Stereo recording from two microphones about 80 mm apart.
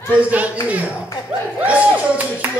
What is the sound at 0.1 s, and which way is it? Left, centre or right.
A child's voice, centre.